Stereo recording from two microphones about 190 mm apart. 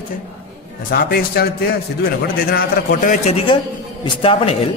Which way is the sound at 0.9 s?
55° left (ahead or behind).